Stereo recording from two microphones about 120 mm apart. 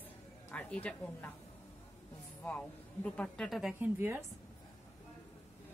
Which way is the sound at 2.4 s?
10° left (ahead or behind).